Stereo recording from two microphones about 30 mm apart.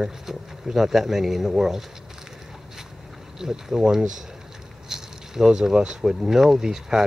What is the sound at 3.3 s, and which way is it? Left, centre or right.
Speech, centre.